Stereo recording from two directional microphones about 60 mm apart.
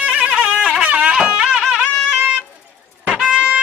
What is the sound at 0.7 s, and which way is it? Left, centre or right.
Music, centre.